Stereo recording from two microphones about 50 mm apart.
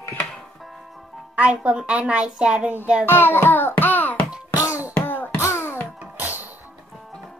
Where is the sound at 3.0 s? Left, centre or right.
Left.